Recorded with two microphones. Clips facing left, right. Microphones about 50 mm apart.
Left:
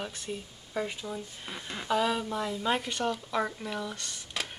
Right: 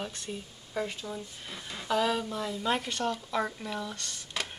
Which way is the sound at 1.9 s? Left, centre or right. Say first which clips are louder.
Even; centre.